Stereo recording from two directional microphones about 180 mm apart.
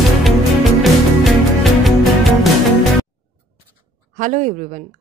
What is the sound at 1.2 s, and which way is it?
Music, centre (ahead or behind).